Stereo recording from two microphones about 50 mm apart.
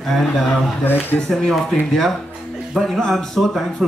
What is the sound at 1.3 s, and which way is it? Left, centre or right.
Speech, centre.